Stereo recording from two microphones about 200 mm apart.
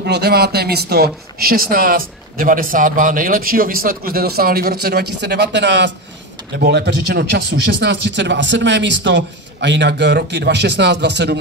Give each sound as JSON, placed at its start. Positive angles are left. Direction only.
{"t": 0.0, "sound": "speech", "side_deg": -55}
{"t": 6.6, "sound": "speech", "side_deg": -50}